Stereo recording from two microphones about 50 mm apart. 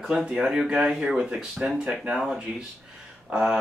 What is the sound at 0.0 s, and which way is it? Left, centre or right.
Speech, centre.